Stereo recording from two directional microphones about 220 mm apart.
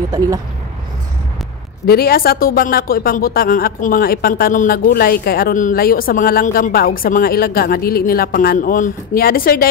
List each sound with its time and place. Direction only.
0.1 s speech: 15° right (ahead or behind)
1.9 s speech: 45° left (ahead or behind)